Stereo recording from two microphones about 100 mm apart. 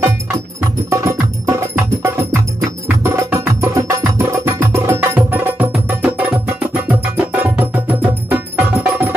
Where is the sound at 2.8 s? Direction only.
25° right (ahead or behind).